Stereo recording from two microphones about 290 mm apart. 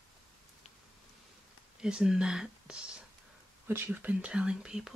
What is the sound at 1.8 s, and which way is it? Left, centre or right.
Speech, centre.